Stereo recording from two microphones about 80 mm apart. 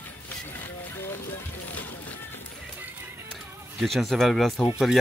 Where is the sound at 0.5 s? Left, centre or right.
Left.